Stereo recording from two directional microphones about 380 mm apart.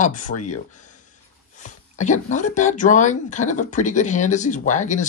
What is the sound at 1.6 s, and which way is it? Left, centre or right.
Speech, centre.